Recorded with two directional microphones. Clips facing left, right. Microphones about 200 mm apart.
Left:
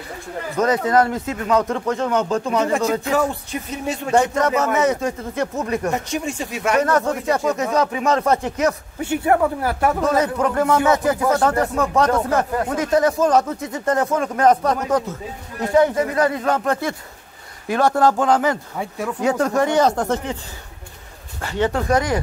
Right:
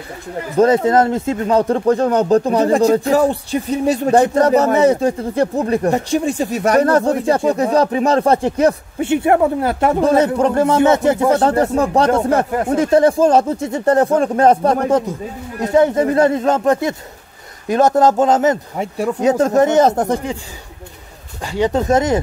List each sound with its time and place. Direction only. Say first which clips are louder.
0.6 s speech: right 5 dB; 30° right (ahead or behind)
15.1 s speech: right 5 dB; 15° right (ahead or behind)
15.7 s a man's voice: right 4 dB; 25° right (ahead or behind)
21.4 s a man's voice: right 4 dB; 15° right (ahead or behind)